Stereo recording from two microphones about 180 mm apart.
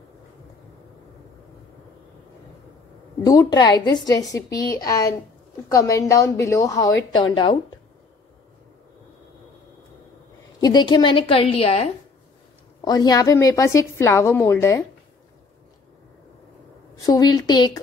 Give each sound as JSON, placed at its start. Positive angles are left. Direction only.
{"t": 3.3, "sound": "a woman's voice", "side_deg": 20}
{"t": 10.6, "sound": "a woman's voice", "side_deg": 25}
{"t": 12.8, "sound": "a woman's voice", "side_deg": 20}
{"t": 16.9, "sound": "a woman's voice", "side_deg": 20}